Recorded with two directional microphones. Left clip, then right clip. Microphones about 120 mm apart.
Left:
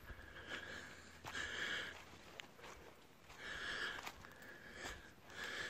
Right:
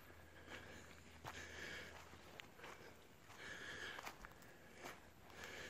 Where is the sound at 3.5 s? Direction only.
35° left (ahead or behind).